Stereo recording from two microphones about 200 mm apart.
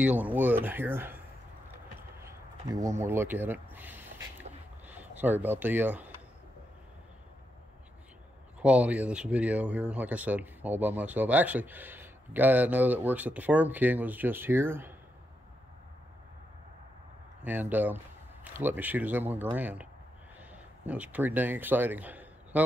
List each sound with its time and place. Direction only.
0.0 s speech: 10° right (ahead or behind)
2.0 s a sound: 15° right (ahead or behind)
3.0 s speech: 10° right (ahead or behind)
8.5 s speech: 5° right (ahead or behind)
17.4 s speech: 10° right (ahead or behind)